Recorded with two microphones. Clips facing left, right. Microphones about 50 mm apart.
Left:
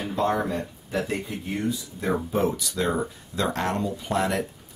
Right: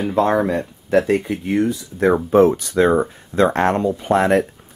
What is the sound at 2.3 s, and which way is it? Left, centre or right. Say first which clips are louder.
Speech: right 11 dB; right.